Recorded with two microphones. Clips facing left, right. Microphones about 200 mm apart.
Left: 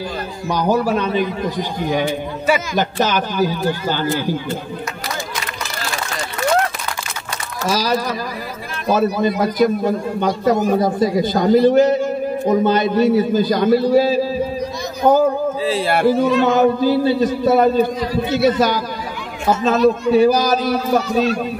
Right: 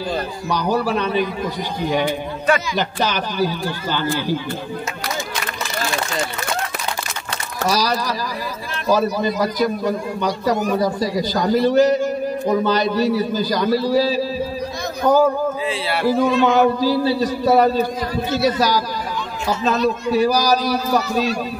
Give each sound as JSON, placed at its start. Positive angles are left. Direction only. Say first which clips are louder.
{"t": 0.5, "sound": "a man's voice", "louder": "left 3 dB", "side_deg": 50}
{"t": 7.6, "sound": "a man's voice", "louder": "left 1 dB", "side_deg": 50}
{"t": 15.6, "sound": "a man's voice", "louder": "left 4 dB", "side_deg": 45}